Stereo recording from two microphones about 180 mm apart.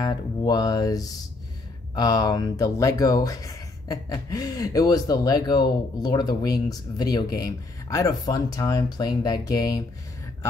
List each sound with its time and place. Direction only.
0.0 s speech: 20° left (ahead or behind)